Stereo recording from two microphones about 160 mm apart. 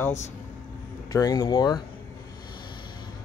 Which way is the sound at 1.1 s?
20° left (ahead or behind).